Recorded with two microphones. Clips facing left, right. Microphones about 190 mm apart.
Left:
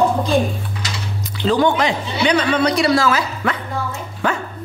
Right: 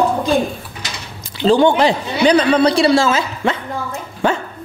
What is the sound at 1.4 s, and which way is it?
A woman's voice, 30° right (ahead or behind).